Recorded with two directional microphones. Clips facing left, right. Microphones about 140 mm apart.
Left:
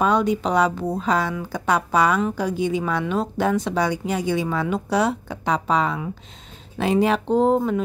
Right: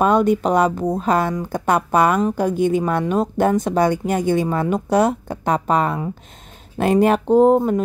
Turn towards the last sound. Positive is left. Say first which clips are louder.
# right 5 dB
turn(degrees=-45)  # may be behind; listen again after turning